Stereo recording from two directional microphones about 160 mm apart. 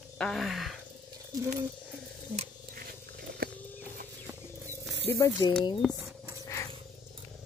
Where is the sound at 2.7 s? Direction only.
65° right (ahead or behind).